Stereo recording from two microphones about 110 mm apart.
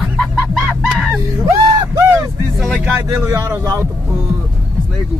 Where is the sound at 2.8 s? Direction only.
20° right (ahead or behind).